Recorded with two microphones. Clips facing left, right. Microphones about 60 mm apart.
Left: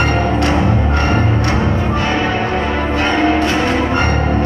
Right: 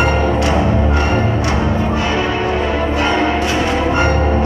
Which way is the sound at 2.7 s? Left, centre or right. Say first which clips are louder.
Left 2 dB; left.